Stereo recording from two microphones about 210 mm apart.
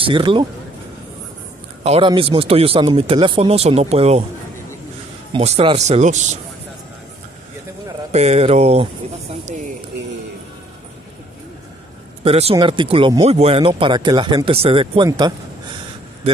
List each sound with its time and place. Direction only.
0.0 s speech: 25° right (ahead or behind)
1.8 s speech: 30° right (ahead or behind)
5.3 s speech: 30° right (ahead or behind)
8.1 s speech: 30° right (ahead or behind)
12.2 s speech: 30° right (ahead or behind)